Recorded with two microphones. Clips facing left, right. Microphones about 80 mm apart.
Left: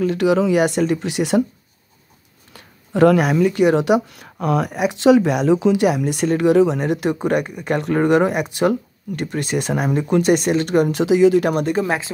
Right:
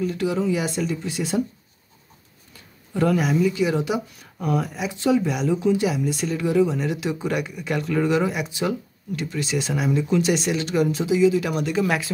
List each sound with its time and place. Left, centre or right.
0.0 s speech: left
2.5 s speech: left
5.5 s speech: left
5.9 s speech: left
11.8 s speech: left